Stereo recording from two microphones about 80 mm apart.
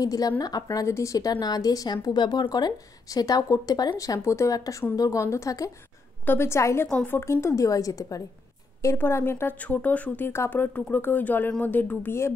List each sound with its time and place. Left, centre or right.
0.0 s speech: left
0.7 s speech: left
1.3 s speech: left
4.5 s speech: left
6.2 s speech: left
8.9 s speech: left
9.6 s speech: centre